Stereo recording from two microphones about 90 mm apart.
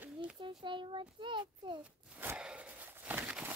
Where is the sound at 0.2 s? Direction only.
65° right (ahead or behind).